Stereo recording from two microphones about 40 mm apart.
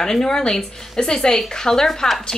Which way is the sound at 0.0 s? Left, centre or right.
Centre.